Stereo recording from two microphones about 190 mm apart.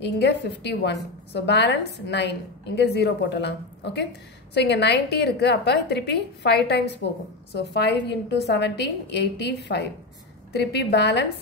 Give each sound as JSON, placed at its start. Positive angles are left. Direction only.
{"t": 0.0, "sound": "a woman's voice", "side_deg": 65}